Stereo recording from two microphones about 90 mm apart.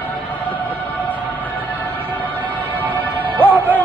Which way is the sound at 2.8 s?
20° right (ahead or behind).